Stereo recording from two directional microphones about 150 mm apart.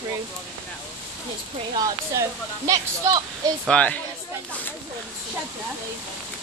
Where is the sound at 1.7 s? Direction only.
20° right (ahead or behind).